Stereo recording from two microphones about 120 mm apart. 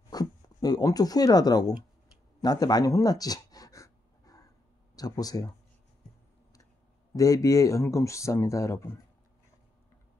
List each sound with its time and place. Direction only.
0.1 s speech: 35° left (ahead or behind)
2.4 s a sound: 35° left (ahead or behind)
4.9 s speech: 30° left (ahead or behind)
7.2 s speech: 30° left (ahead or behind)